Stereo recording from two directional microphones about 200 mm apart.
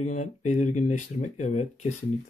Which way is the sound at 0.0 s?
35° left (ahead or behind).